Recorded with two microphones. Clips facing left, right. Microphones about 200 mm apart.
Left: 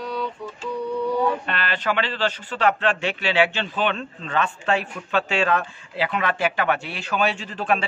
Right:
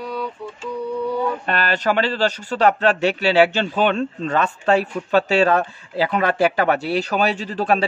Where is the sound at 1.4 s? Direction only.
40° right (ahead or behind).